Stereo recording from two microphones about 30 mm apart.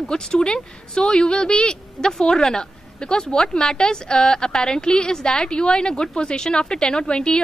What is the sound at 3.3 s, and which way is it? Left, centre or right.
A woman's voice, centre.